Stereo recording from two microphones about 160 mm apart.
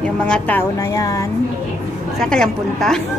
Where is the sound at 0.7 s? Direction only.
20° left (ahead or behind).